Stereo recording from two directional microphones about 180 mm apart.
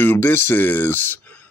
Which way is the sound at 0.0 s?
10° left (ahead or behind).